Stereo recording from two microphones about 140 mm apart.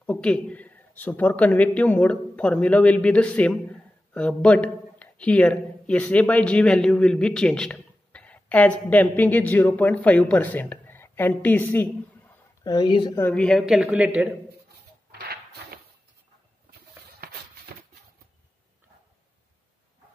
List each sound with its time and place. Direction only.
0.0 s a man's voice: 10° left (ahead or behind)
12.6 s a woman's voice: 35° left (ahead or behind)
13.3 s a man's voice: 5° left (ahead or behind)
17.7 s a sound: 90° right